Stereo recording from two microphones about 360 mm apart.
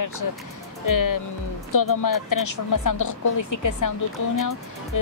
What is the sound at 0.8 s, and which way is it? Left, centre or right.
Speech, left.